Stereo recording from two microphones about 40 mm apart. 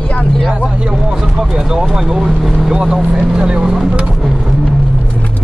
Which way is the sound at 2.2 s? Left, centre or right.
Centre.